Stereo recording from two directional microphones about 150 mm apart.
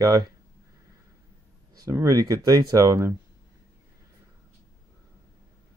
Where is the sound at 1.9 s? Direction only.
25° right (ahead or behind).